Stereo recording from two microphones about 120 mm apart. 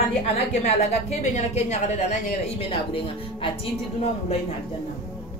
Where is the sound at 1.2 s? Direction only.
80° left.